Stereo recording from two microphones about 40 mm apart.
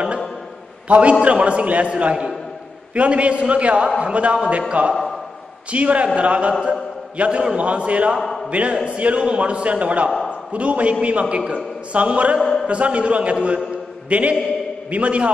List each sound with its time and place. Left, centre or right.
0.8 s a man's voice: right
8.2 s a sound: centre
8.5 s a man's voice: right